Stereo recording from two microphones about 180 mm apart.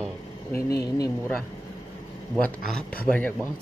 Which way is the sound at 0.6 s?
60° left (ahead or behind).